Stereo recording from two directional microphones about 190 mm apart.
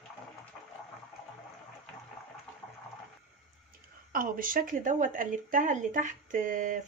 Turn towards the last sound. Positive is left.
turn(degrees=-45)  # may be behind; listen again after turning